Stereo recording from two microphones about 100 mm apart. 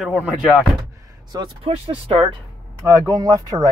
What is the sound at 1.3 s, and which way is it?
Speech, 40° right (ahead or behind).